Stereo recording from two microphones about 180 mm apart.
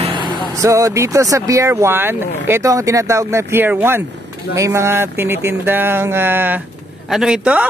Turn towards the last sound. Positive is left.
turn(degrees=-5)  # may be behind; listen again after turning